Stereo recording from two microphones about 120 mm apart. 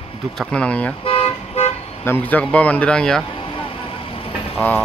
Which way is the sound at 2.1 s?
15° left (ahead or behind).